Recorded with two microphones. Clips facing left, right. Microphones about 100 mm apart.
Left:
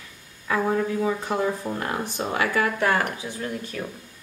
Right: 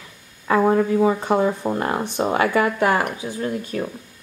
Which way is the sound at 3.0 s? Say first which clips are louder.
Right 4 dB; 35° right (ahead or behind).